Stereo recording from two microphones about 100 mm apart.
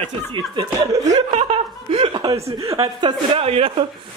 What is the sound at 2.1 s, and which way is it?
Chuckle, 45° right (ahead or behind).